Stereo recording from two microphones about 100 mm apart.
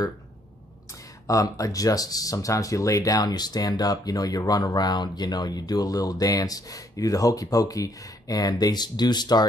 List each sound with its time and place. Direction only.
1.2 s speech: 35° left (ahead or behind)